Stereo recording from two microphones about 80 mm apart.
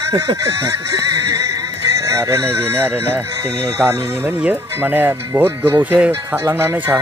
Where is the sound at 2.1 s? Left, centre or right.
Right.